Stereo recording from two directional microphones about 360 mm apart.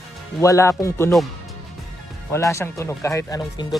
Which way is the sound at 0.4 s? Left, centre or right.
Centre.